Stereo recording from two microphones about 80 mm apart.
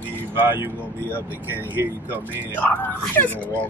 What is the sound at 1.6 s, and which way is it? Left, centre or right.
Speech, right.